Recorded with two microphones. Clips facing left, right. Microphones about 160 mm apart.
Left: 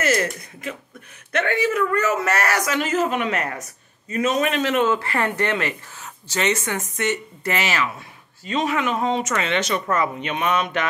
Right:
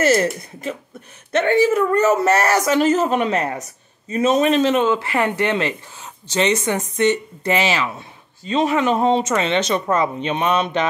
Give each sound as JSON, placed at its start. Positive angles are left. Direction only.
{"t": 0.0, "sound": "speech", "side_deg": -30}